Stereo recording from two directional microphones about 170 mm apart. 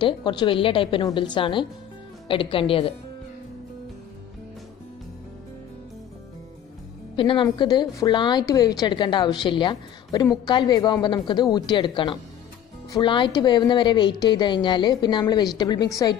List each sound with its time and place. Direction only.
0.0 s a woman's voice: 25° left (ahead or behind)
7.2 s a woman's voice: 30° left (ahead or behind)